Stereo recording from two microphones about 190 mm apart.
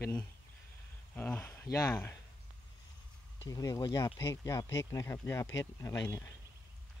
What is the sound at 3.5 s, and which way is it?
Speech, 20° left (ahead or behind).